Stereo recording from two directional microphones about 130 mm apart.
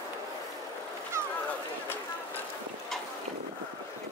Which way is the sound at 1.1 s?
20° right (ahead or behind).